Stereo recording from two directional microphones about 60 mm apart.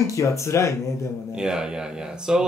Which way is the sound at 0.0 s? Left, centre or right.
Left.